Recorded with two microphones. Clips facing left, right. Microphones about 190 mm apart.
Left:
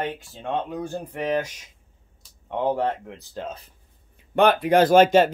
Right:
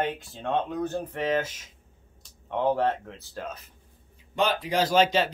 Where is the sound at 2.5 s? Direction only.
15° left (ahead or behind).